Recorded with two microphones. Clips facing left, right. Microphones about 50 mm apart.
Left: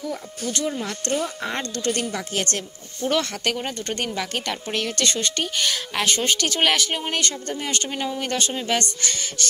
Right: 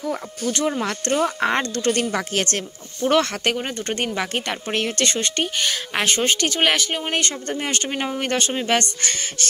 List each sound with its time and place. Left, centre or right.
0.0 s speech: right
3.4 s a woman's voice: right
3.9 s a woman's voice: right
6.5 s speech: centre
7.1 s a woman's voice: right
7.4 s speech: right